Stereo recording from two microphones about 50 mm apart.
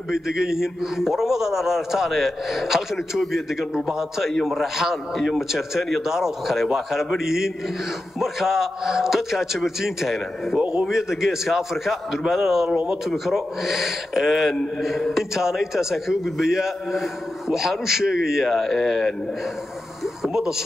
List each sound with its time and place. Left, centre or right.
0.1 s a man's voice: centre
10.6 s speech: right
10.9 s a man's voice: centre
12.6 s a man's voice: centre
13.1 s a man's voice: centre
18.5 s speech: centre
20.3 s a man's voice: centre